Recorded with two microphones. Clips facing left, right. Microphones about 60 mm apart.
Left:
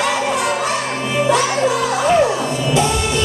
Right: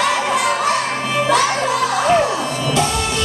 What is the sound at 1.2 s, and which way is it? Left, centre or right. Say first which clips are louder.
Music: left 1 dB; right.